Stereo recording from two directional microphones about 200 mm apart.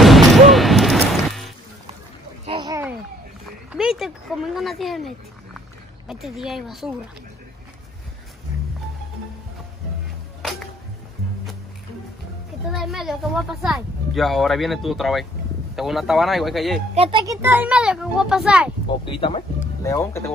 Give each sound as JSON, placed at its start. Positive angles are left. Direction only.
{"t": 0.0, "sound": "smash", "side_deg": 0}
{"t": 2.4, "sound": "a sound", "side_deg": -25}
{"t": 3.7, "sound": "speech", "side_deg": 0}
{"t": 12.7, "sound": "speech", "side_deg": 0}
{"t": 16.9, "sound": "a child's voice", "side_deg": -25}
{"t": 18.9, "sound": "speech", "side_deg": 25}
{"t": 19.8, "sound": "speech", "side_deg": 15}